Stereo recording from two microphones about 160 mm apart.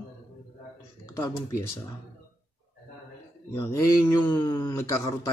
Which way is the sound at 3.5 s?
15° left (ahead or behind).